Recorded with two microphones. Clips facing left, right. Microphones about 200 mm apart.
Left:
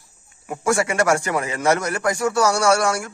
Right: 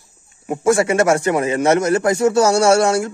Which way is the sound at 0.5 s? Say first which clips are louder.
Right 6 dB; 25° right (ahead or behind).